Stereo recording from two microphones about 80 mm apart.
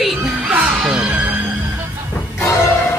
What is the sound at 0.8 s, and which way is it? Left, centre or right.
Speech, centre.